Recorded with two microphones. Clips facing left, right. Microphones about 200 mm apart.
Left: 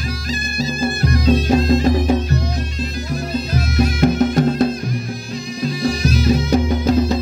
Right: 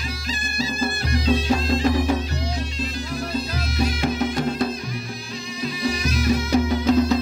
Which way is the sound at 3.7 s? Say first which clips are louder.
Left 7 dB; 45° left (ahead or behind).